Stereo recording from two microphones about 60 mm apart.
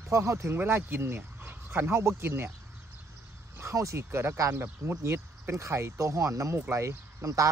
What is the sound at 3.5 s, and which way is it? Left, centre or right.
Speech, right.